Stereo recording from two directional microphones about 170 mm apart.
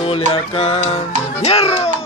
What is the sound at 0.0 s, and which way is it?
Music, 30° left (ahead or behind).